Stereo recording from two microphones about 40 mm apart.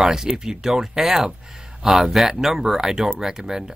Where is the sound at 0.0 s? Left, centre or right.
Centre.